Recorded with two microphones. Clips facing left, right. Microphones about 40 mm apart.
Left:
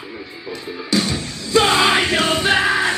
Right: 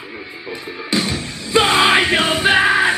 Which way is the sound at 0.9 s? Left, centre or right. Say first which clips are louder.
Even; centre.